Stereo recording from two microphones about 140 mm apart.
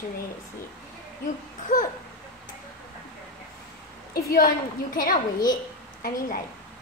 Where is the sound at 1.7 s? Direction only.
65° left (ahead or behind).